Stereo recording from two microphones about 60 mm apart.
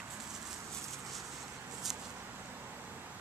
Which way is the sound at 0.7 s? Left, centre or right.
Right.